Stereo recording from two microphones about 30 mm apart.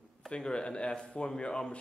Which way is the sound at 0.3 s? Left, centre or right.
Left.